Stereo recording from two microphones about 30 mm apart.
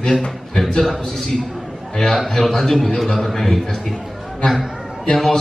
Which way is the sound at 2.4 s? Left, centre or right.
Centre.